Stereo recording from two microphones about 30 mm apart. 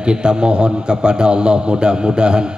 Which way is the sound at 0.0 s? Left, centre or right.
Right.